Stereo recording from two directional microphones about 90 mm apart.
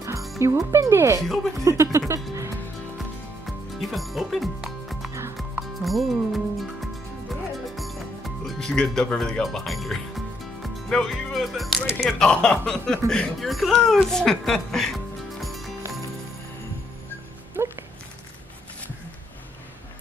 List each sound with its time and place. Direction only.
0.4 s speech: 35° right (ahead or behind)
1.2 s speech: 5° left (ahead or behind)
1.6 s speech: 35° right (ahead or behind)
3.0 s music: centre (ahead or behind)
5.6 s speech: centre (ahead or behind)
7.7 s music: centre (ahead or behind)
12.0 s speech: 5° left (ahead or behind)
15.4 s music: centre (ahead or behind)
17.6 s music: 20° right (ahead or behind)